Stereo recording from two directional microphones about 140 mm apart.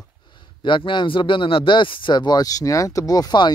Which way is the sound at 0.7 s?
35° left (ahead or behind).